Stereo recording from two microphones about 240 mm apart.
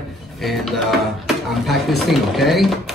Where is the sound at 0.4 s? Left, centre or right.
Centre.